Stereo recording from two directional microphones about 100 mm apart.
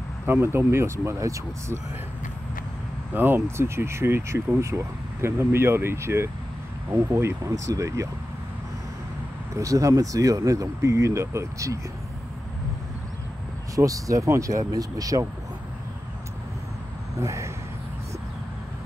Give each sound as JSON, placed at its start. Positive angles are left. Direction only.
{"t": 0.3, "sound": "speech", "side_deg": -25}
{"t": 3.2, "sound": "speech", "side_deg": -25}
{"t": 9.6, "sound": "speech", "side_deg": -35}
{"t": 13.7, "sound": "speech", "side_deg": -35}
{"t": 17.2, "sound": "speech", "side_deg": -30}